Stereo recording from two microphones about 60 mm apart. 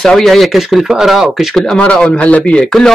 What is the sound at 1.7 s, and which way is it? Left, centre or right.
Speech, centre.